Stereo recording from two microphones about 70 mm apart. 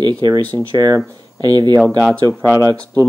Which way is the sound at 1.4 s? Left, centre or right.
Right.